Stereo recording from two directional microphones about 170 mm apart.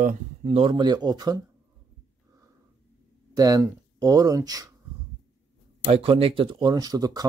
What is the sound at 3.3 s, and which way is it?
Speech, 20° right (ahead or behind).